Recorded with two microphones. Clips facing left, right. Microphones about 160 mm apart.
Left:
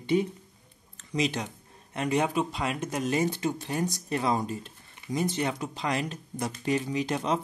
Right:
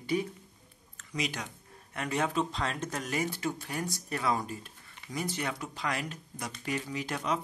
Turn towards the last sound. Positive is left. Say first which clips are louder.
# left 5 dB
turn(degrees=25)  # may be behind; listen again after turning